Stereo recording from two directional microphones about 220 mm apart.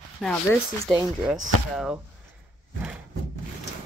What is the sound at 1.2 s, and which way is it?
Speech, centre (ahead or behind).